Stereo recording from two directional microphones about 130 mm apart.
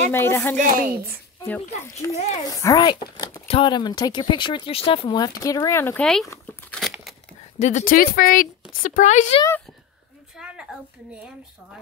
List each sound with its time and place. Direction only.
0.1 s speech: 20° left (ahead or behind)
0.6 s speech: 90° right
2.0 s speech: 25° left (ahead or behind)
5.9 s speech: 5° left (ahead or behind)
6.2 s speech: 20° left (ahead or behind)
6.7 s crumpling: centre (ahead or behind)
7.5 s speech: 65° left (ahead or behind)
10.3 s a sound: 5° right (ahead or behind)